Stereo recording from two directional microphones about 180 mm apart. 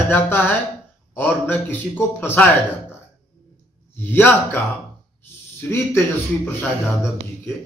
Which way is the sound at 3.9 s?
10° left (ahead or behind).